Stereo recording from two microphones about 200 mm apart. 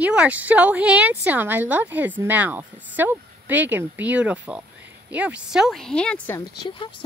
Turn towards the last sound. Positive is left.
turn(degrees=10)  # may be behind; listen again after turning